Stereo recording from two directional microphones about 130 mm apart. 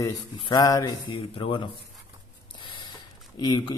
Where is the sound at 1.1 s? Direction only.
40° left (ahead or behind).